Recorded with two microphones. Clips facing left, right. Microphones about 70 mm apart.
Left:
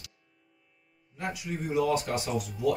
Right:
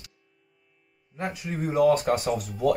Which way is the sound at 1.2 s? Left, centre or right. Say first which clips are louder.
Right 3 dB; right.